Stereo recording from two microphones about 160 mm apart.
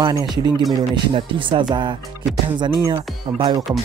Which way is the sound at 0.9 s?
30° right (ahead or behind).